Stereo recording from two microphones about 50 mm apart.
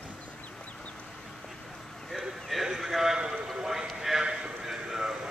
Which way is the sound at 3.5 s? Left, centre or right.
Centre.